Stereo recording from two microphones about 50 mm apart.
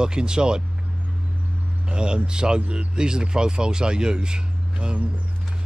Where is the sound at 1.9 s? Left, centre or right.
Centre.